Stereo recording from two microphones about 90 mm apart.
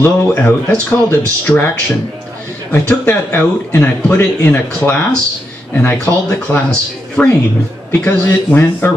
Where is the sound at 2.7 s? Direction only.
20° left (ahead or behind).